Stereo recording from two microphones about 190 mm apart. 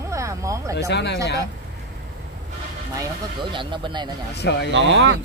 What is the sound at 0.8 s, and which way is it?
Speech, 65° left (ahead or behind).